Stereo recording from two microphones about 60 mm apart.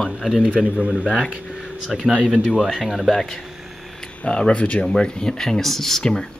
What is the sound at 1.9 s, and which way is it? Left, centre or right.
Speech, centre.